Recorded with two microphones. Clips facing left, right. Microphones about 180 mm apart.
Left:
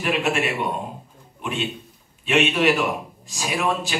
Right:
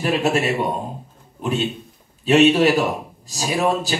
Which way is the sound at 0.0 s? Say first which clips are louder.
Right 3 dB; 40° right (ahead or behind).